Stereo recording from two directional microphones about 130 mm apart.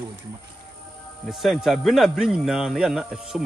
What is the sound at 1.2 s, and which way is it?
Speech, centre (ahead or behind).